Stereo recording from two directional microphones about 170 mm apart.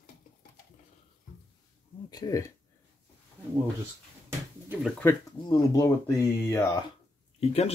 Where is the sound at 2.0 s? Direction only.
20° left (ahead or behind).